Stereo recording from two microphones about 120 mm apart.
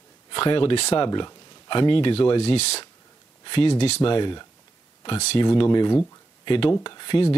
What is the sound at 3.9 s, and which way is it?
Speech, 45° left (ahead or behind).